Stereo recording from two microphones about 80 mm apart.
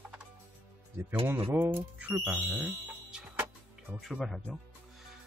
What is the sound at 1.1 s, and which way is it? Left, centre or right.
Speech, right.